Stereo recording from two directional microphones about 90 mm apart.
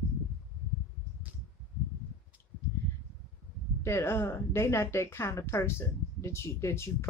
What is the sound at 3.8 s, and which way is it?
Speech, 30° left (ahead or behind).